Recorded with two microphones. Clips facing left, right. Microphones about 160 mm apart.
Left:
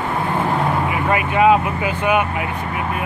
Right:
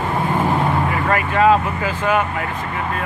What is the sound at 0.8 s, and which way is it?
Speech, 15° left (ahead or behind).